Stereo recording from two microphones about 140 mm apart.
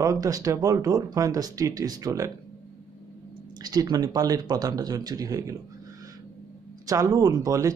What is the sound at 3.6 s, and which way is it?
Speech, 30° right (ahead or behind).